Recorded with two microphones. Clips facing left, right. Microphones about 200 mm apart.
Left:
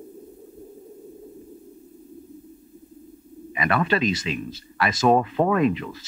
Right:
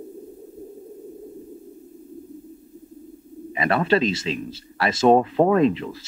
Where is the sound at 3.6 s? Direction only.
30° right (ahead or behind).